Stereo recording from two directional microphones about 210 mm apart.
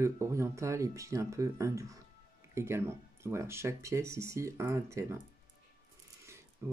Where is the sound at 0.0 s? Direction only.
15° right (ahead or behind).